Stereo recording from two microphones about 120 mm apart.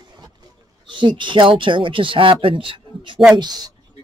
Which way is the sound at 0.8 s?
40° right (ahead or behind).